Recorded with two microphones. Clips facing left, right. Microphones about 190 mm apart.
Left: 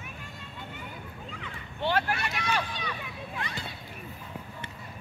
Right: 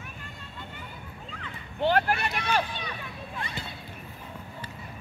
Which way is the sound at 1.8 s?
50° right (ahead or behind).